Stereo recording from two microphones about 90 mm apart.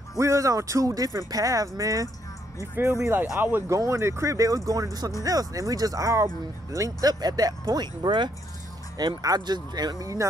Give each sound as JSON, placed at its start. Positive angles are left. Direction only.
{"t": 0.2, "sound": "speech", "side_deg": -35}
{"t": 2.6, "sound": "speech", "side_deg": -30}
{"t": 3.7, "sound": "speech", "side_deg": -35}